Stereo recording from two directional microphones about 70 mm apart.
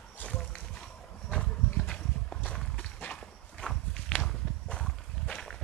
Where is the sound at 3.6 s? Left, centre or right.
Centre.